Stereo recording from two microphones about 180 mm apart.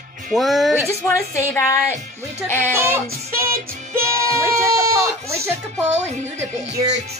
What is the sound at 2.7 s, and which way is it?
Music, 15° right (ahead or behind).